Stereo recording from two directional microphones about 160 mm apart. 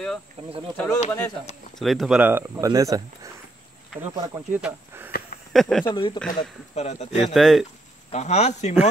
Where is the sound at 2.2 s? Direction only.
15° right (ahead or behind).